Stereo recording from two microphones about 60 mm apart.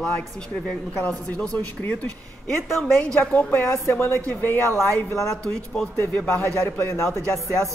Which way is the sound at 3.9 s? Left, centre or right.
Left.